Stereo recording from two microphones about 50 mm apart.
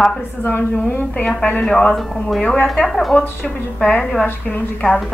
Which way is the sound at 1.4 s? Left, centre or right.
Left.